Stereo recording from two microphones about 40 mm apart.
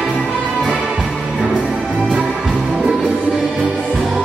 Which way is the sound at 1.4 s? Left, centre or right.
Right.